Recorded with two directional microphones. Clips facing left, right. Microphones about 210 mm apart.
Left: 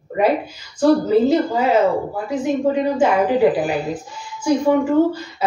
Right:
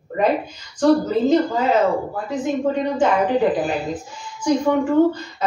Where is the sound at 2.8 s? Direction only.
10° left (ahead or behind).